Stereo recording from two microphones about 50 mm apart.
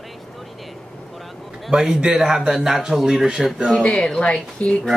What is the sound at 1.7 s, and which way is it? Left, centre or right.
A man's voice, centre.